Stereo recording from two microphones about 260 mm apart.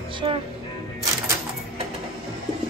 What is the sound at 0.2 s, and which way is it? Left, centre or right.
Speech, centre.